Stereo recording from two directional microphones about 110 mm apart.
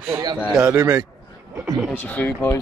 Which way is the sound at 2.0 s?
15° left (ahead or behind).